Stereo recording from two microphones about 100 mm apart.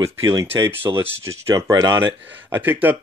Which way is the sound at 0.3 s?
30° right (ahead or behind).